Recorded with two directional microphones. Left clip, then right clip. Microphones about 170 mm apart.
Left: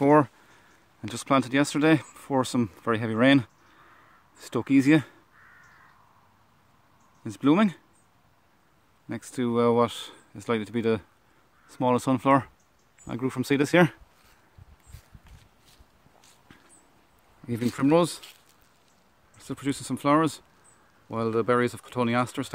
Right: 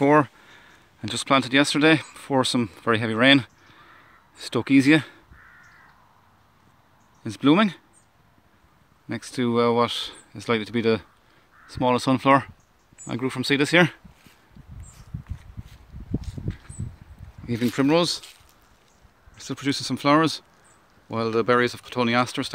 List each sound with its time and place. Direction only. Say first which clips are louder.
0.0 s a sound: right 2 dB; centre (ahead or behind)
1.0 s speech: right 4 dB; centre (ahead or behind)
7.2 s speech: right 3 dB; 5° left (ahead or behind)
9.1 s speech: right 3 dB; centre (ahead or behind)
17.5 s speech: right 2 dB; 5° left (ahead or behind)
19.3 s speech: right 5 dB; 5° left (ahead or behind)